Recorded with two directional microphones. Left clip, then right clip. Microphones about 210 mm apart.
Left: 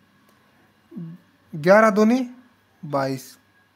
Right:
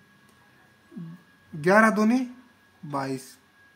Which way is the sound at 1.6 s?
45° left (ahead or behind).